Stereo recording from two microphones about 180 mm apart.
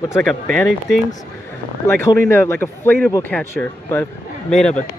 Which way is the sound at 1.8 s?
15° left (ahead or behind).